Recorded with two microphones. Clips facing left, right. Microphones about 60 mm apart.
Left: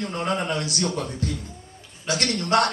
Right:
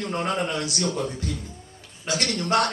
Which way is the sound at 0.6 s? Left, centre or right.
Left.